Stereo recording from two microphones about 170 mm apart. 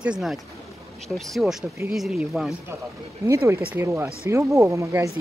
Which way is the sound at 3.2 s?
15° right (ahead or behind).